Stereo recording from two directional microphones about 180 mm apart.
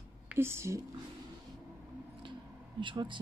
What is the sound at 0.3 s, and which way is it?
Speech, 15° right (ahead or behind).